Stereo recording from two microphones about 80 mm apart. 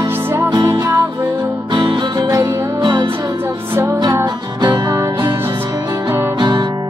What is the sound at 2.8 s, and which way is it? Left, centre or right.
Music, right.